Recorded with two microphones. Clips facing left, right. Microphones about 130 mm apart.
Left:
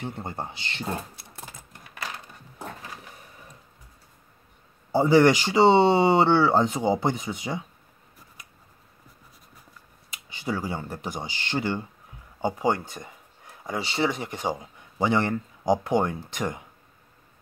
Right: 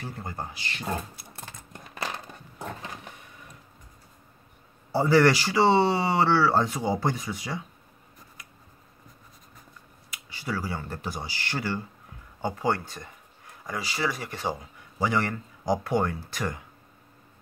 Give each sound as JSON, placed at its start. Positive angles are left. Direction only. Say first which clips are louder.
{"t": 0.0, "sound": "speech", "louder": "left 3 dB", "side_deg": 25}
{"t": 1.1, "sound": "a sound", "louder": "even", "side_deg": 0}
{"t": 4.9, "sound": "speech", "louder": "left 2 dB", "side_deg": 20}
{"t": 10.1, "sound": "speech", "louder": "left 3 dB", "side_deg": 20}